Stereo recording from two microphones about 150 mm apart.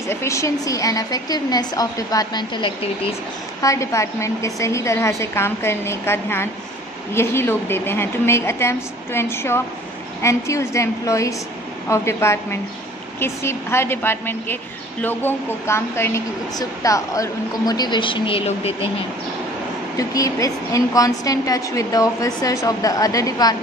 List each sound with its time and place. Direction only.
0.1 s a woman's voice: 20° left (ahead or behind)
3.6 s a woman's voice: 20° left (ahead or behind); by 18.9 s 40° left (ahead or behind)
20.0 s a woman's voice: 20° left (ahead or behind)